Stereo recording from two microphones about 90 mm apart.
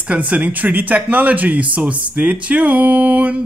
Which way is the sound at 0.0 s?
15° right (ahead or behind).